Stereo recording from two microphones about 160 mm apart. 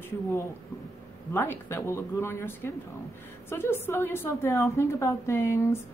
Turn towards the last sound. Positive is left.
turn(degrees=20)  # may be behind; listen again after turning